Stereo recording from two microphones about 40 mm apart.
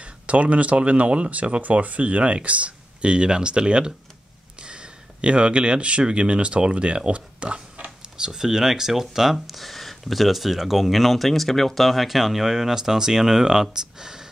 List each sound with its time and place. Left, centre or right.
0.0 s speech: right
7.1 s a sound: right
8.2 s speech: centre